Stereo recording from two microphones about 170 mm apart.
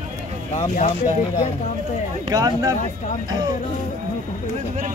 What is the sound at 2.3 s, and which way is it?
Speech, 20° right (ahead or behind).